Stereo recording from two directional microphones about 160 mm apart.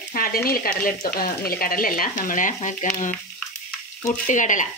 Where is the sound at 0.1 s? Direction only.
65° left (ahead or behind).